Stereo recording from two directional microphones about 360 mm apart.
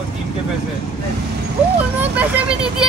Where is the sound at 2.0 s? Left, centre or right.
Centre.